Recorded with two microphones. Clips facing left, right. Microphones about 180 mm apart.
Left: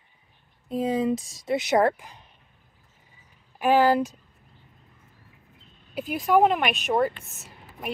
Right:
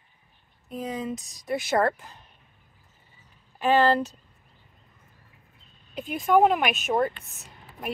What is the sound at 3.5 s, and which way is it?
Speech, 10° left (ahead or behind).